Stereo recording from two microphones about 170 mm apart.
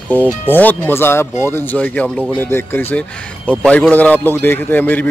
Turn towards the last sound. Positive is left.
turn(degrees=10)  # may be behind; listen again after turning